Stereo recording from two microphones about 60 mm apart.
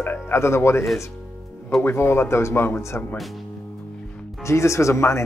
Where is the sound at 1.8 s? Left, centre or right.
Left.